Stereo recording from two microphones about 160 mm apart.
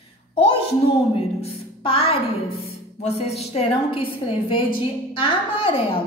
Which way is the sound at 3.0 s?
40° left (ahead or behind).